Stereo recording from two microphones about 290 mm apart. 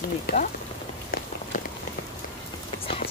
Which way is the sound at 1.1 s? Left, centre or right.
Left.